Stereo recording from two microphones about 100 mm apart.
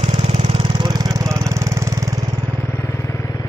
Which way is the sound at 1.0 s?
35° right (ahead or behind).